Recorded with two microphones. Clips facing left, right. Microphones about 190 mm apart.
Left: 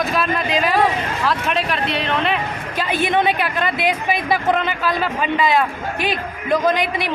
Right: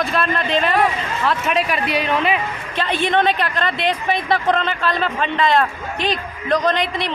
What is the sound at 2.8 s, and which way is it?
A man's voice, 10° left (ahead or behind).